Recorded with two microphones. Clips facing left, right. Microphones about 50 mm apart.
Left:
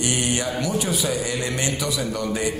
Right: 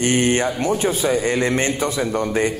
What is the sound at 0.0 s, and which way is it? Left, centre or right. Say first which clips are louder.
A man's voice: right 6 dB; right.